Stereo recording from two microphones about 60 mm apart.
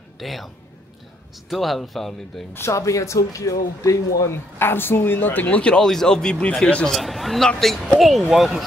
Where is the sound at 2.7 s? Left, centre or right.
Left.